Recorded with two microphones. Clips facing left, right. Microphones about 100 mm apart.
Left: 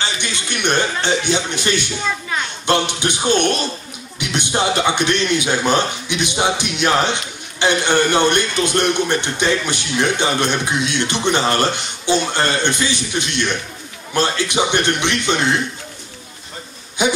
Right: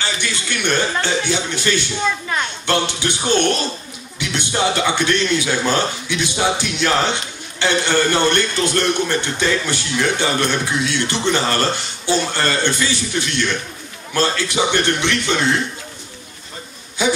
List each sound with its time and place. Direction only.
0.0 s speech: 20° left (ahead or behind)
2.6 s a sound: 20° left (ahead or behind)
4.2 s speech: 20° left (ahead or behind)
17.0 s speech: 20° left (ahead or behind)